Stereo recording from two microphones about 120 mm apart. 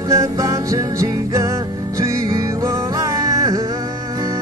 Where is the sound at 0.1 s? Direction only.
25° right (ahead or behind).